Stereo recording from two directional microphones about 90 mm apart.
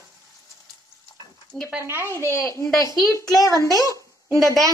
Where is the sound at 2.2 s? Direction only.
30° left (ahead or behind).